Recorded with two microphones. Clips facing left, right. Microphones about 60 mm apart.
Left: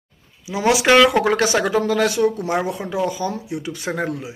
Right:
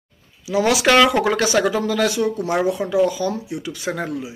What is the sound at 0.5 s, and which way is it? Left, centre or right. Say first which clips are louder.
Speech: even; centre.